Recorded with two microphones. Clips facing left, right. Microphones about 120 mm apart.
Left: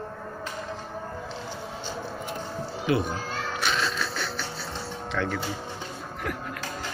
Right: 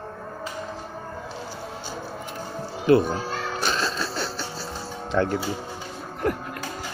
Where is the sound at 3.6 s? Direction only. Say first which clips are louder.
Right 1 dB; 35° right (ahead or behind).